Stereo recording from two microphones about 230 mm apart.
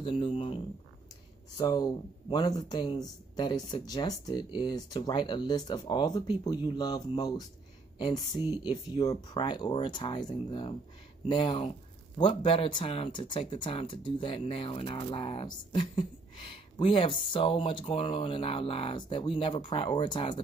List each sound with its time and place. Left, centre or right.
0.0 s speech: left
1.6 s speech: centre